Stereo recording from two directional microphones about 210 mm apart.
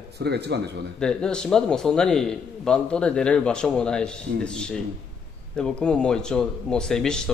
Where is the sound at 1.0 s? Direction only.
5° left (ahead or behind).